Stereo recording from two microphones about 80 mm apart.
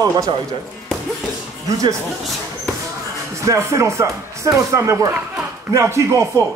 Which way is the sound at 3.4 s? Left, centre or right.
Right.